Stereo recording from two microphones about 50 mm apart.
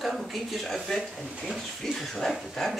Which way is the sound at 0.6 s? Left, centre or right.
Centre.